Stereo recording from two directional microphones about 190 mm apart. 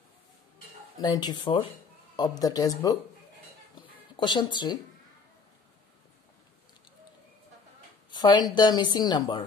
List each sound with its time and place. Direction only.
0.9 s a woman's voice: 20° left (ahead or behind)
3.7 s a sound: 25° left (ahead or behind)
8.1 s a woman's voice: 20° left (ahead or behind)